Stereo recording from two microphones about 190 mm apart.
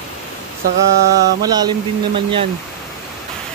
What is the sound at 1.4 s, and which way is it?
Speech, 20° right (ahead or behind).